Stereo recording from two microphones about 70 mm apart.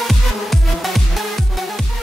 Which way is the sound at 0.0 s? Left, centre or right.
Centre.